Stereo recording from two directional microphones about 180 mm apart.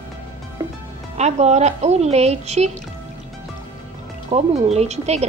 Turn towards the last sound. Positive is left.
turn(degrees=-35)  # may be behind; listen again after turning